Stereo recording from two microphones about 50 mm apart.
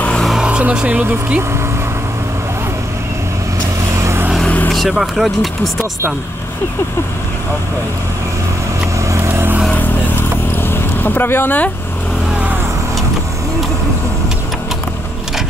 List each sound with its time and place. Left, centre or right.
0.4 s speech: right
3.9 s vehicle: right
4.8 s speech: centre
9.1 s vehicle: right
10.5 s vehicle: left